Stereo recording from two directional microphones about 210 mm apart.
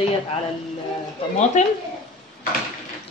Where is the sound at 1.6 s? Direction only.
35° left (ahead or behind).